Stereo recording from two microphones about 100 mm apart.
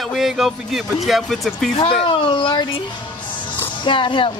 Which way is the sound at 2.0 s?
60° left (ahead or behind).